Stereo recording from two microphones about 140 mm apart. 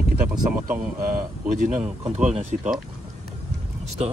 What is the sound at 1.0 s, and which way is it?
Speech, 75° right (ahead or behind).